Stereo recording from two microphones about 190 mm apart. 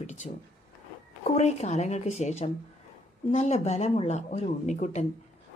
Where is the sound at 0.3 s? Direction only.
40° left (ahead or behind).